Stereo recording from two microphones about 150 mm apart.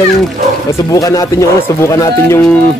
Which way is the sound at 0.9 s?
20° left (ahead or behind).